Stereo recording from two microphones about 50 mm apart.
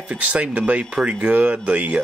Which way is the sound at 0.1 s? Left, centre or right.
Right.